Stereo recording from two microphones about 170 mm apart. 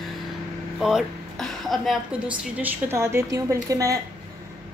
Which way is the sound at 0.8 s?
Centre (ahead or behind).